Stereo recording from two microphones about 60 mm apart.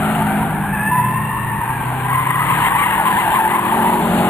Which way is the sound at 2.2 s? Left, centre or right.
Left.